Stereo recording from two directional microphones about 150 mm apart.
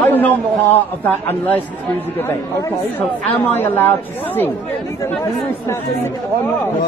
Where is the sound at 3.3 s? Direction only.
15° left (ahead or behind).